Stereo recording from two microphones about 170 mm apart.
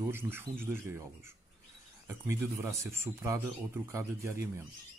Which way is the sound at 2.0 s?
15° right (ahead or behind).